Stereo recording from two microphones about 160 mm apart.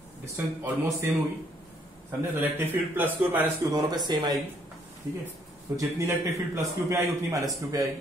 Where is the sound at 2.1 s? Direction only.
10° right (ahead or behind).